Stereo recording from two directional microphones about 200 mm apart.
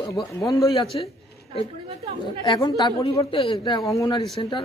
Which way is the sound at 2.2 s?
20° left (ahead or behind).